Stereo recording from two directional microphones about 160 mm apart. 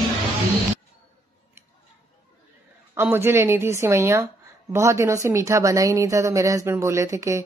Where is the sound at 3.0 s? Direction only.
15° right (ahead or behind).